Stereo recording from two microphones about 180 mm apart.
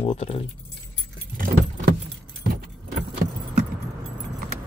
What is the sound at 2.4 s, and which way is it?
Keys jangling, 50° right (ahead or behind).